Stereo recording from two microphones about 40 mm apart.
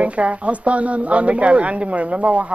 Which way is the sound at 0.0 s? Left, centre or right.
Right.